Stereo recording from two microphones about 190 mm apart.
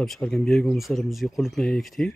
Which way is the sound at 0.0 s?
Centre (ahead or behind).